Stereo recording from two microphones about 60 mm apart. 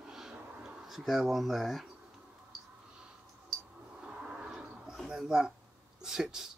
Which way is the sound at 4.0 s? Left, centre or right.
Centre.